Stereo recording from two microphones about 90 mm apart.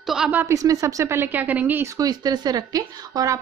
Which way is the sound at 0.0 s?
5° right (ahead or behind).